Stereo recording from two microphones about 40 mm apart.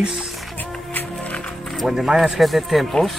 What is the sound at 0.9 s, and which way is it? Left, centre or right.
Music, left.